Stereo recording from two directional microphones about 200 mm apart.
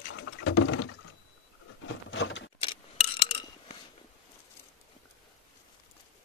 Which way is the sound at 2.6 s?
25° left (ahead or behind).